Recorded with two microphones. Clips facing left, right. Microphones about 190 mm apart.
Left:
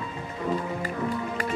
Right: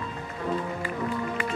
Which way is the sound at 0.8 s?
40° left (ahead or behind).